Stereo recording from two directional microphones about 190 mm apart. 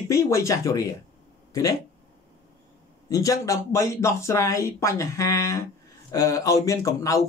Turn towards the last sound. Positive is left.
turn(degrees=15)  # may be behind; listen again after turning